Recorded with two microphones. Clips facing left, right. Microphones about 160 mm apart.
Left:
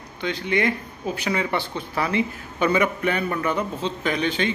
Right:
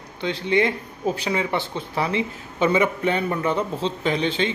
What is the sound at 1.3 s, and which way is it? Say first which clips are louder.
A man's voice: right 1 dB; 20° right (ahead or behind).